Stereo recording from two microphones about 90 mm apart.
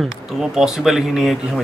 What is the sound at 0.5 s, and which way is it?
Speech, 5° right (ahead or behind).